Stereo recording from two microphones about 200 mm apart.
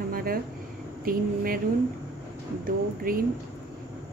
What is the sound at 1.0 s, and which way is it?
Speech, 45° right (ahead or behind).